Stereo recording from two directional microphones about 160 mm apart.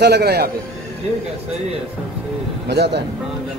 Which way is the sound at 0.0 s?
90° right.